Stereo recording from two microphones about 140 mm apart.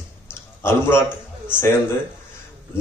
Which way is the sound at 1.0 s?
10° right (ahead or behind).